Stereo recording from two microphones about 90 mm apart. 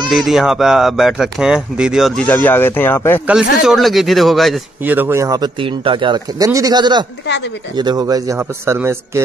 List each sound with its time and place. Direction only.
0.1 s speech: centre (ahead or behind)
2.2 s speech: 20° left (ahead or behind)
3.3 s speech: 5° right (ahead or behind)
4.8 s a man's voice: 25° right (ahead or behind)
5.6 s a man's voice: 70° right (ahead or behind)
6.3 s speech: 40° right (ahead or behind)
8.4 s a man's voice: 25° right (ahead or behind)